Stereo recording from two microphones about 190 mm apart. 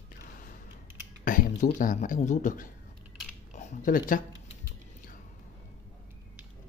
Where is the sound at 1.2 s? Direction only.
45° left (ahead or behind).